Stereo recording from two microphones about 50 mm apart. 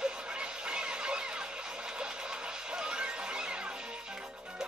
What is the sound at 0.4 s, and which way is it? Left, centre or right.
Fowl, centre.